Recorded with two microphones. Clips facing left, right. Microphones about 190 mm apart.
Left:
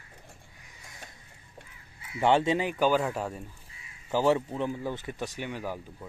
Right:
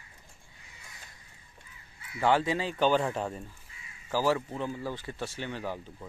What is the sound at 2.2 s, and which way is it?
Speech, 25° left (ahead or behind).